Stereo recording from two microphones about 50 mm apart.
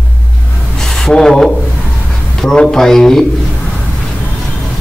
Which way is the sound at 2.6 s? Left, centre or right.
Centre.